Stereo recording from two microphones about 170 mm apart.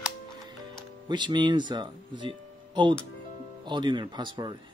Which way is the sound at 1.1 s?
25° right (ahead or behind).